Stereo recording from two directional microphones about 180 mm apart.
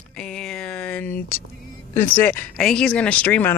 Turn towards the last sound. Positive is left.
turn(degrees=10)  # may be behind; listen again after turning